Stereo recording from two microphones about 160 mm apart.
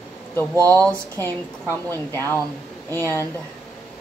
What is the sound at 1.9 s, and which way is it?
Speech, 15° left (ahead or behind).